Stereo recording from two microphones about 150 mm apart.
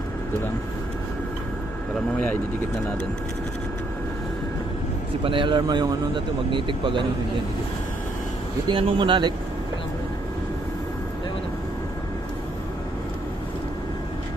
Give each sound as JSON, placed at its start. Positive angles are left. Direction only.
{"t": 5.2, "sound": "speech", "side_deg": -35}
{"t": 8.6, "sound": "speech", "side_deg": -35}